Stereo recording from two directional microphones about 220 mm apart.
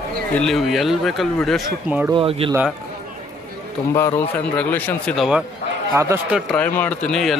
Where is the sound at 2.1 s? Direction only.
25° right (ahead or behind).